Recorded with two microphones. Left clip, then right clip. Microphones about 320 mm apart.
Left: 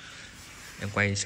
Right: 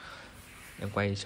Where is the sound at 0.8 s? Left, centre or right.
Centre.